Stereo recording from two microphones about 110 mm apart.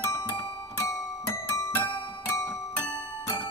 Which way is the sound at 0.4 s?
20° left (ahead or behind).